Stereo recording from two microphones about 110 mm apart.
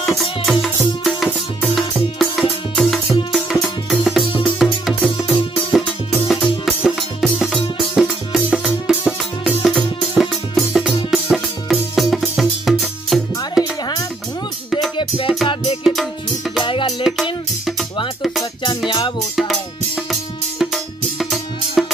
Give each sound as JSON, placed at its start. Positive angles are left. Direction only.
{"t": 0.0, "sound": "music", "side_deg": 0}
{"t": 15.0, "sound": "music", "side_deg": 55}
{"t": 15.8, "sound": "music", "side_deg": 0}
{"t": 16.6, "sound": "music", "side_deg": 45}
{"t": 17.0, "sound": "music", "side_deg": -5}
{"t": 18.9, "sound": "music", "side_deg": 45}
{"t": 20.1, "sound": "music", "side_deg": 0}